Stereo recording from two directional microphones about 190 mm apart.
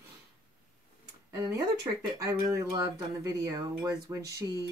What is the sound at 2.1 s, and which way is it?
Speech, 15° right (ahead or behind).